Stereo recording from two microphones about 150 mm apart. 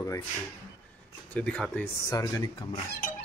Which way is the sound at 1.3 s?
5° left (ahead or behind).